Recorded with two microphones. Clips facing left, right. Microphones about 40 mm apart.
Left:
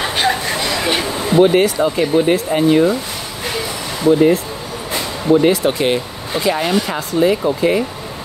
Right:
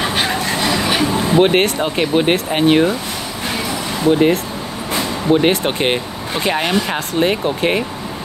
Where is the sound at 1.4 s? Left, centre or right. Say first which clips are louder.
Left 4 dB; right.